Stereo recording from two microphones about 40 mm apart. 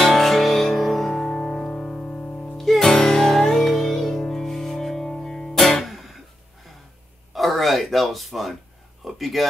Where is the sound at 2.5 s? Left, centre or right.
Centre.